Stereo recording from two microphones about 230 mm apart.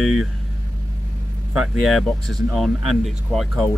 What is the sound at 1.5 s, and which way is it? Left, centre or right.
Speech, centre.